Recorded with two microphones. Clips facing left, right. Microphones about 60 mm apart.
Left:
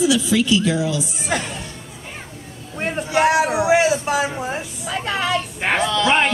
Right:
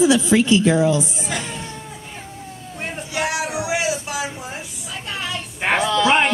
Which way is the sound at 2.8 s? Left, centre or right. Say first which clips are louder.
Left 7 dB; left.